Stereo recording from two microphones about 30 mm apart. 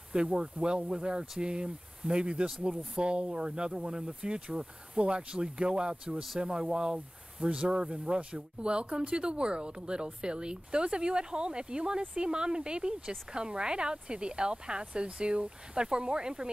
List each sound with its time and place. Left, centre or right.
0.1 s speech: right
8.2 s speech: right